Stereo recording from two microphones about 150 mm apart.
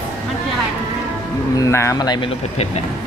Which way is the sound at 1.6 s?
20° left (ahead or behind).